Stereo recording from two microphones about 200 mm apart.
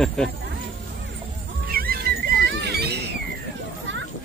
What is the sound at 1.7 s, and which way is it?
Music, 50° right (ahead or behind).